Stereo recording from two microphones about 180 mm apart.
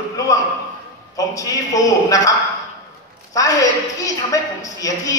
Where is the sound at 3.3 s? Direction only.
20° left (ahead or behind).